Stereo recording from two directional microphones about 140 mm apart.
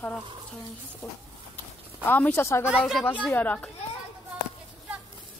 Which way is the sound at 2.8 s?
Centre (ahead or behind).